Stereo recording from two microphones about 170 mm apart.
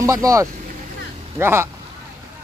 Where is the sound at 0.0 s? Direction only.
20° right (ahead or behind).